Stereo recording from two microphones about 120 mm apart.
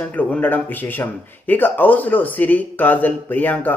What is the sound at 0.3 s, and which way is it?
A man's voice, 15° left (ahead or behind).